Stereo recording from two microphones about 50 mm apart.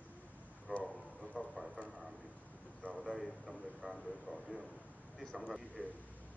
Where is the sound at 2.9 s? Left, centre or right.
Centre.